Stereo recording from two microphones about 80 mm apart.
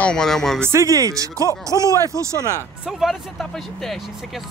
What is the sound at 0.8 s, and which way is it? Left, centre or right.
Speech, right.